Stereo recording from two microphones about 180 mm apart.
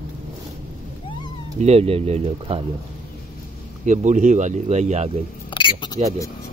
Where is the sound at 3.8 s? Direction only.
45° right (ahead or behind).